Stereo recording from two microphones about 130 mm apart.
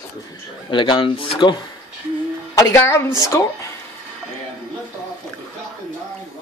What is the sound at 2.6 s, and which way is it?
Speech, 20° left (ahead or behind).